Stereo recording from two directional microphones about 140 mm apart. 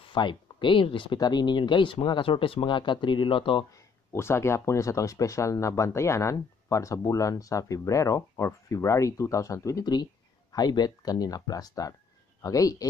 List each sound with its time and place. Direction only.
0.0 s speech: 35° left (ahead or behind)
3.7 s speech: 20° left (ahead or behind)